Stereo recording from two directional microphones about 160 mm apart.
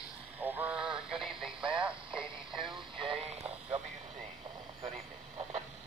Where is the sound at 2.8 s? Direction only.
30° right (ahead or behind).